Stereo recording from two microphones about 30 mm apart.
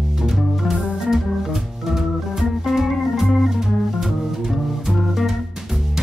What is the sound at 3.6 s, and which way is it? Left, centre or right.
Music, centre.